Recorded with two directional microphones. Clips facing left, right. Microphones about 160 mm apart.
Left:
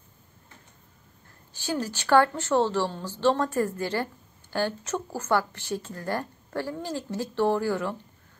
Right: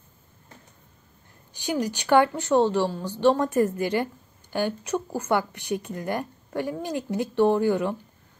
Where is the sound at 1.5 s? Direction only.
15° right (ahead or behind).